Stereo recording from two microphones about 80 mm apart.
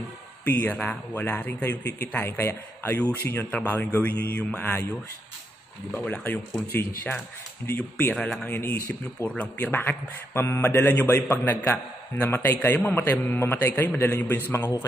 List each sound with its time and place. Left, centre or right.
0.5 s a man's voice: left
5.9 s a man's voice: centre
9.2 s a man's voice: centre